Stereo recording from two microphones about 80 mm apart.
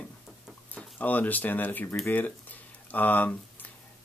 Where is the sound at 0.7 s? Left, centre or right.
Left.